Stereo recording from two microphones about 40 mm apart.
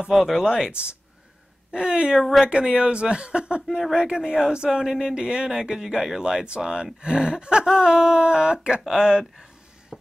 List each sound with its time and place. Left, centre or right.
0.1 s speech: centre
2.1 s speech: centre
2.4 s speech: right
4.6 s speech: centre